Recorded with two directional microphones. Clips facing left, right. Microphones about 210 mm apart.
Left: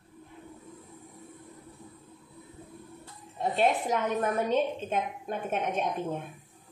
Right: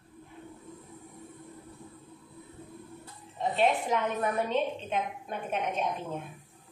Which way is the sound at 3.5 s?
40° left (ahead or behind).